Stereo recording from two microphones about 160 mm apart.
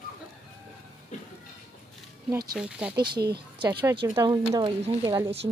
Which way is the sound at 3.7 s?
25° right (ahead or behind).